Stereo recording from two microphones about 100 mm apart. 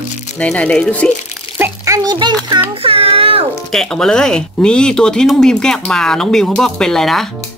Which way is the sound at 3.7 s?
5° left (ahead or behind).